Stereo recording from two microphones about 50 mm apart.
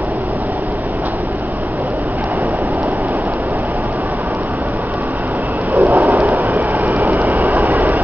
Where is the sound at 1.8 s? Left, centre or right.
Right.